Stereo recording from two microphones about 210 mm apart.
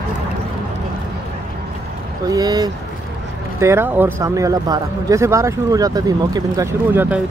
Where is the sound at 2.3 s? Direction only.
15° right (ahead or behind).